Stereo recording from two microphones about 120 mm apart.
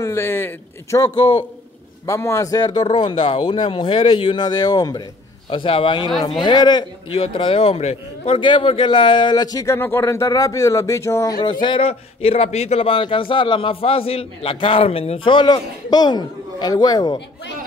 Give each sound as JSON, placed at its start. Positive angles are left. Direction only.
{"t": 0.0, "sound": "a man's voice", "side_deg": 20}
{"t": 1.1, "sound": "speech", "side_deg": 40}
{"t": 2.0, "sound": "a man's voice", "side_deg": 25}
{"t": 2.8, "sound": "speech", "side_deg": 50}
{"t": 5.5, "sound": "a man's voice", "side_deg": 45}
{"t": 7.1, "sound": "speech", "side_deg": 50}
{"t": 8.4, "sound": "a man's voice", "side_deg": 45}
{"t": 9.8, "sound": "a man's voice", "side_deg": 20}
{"t": 11.4, "sound": "speech", "side_deg": 45}